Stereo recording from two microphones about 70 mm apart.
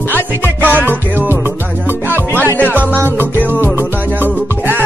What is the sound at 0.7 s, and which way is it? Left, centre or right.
Music, right.